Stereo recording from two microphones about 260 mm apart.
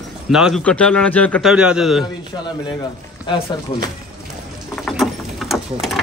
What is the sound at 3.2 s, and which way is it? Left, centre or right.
Speech, centre.